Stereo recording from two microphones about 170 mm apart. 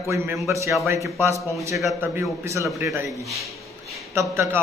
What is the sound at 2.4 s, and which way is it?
A man's voice, 15° right (ahead or behind).